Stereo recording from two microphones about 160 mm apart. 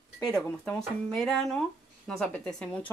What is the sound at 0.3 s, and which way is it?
Speech, 5° left (ahead or behind).